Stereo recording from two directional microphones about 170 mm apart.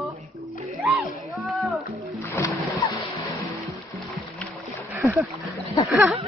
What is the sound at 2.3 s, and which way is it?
Music, 20° left (ahead or behind).